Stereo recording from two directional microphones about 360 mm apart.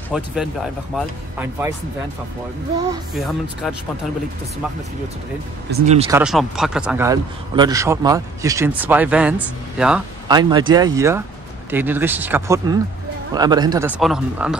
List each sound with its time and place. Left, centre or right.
0.1 s speech: centre
2.9 s speech: centre
5.7 s speech: centre
6.0 s speech: centre